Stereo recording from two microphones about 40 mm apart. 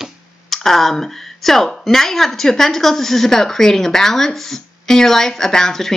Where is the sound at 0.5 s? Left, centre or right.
Centre.